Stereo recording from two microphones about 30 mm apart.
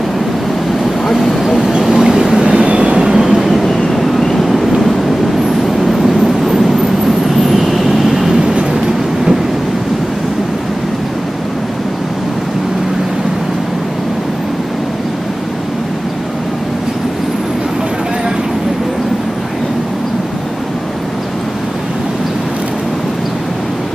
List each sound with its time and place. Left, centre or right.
1.6 s vehicle: right
2.6 s vehicle: right
3.0 s vehicle: centre
3.4 s vehicle: centre
4.4 s vehicle: centre
5.9 s vehicle: centre